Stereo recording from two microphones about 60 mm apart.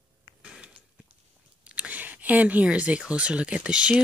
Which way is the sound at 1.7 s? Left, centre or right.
Right.